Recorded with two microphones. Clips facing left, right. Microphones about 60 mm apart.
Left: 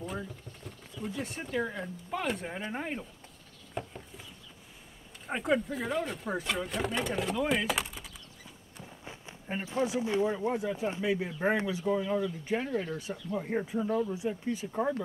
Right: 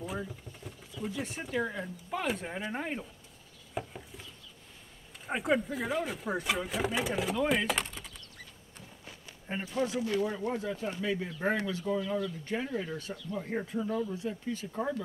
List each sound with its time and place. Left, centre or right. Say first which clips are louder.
0.0 s speech: right 1 dB; centre
3.8 s patter: right 1 dB; centre
5.2 s speech: even; centre
8.7 s run: left 4 dB; centre
9.8 s speech: left 4 dB; centre